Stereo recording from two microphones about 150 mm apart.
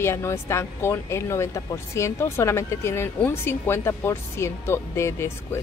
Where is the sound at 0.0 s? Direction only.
15° left (ahead or behind).